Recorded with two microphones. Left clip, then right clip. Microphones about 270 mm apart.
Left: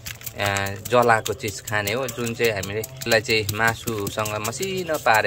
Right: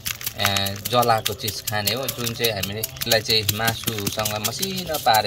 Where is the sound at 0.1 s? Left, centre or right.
Centre.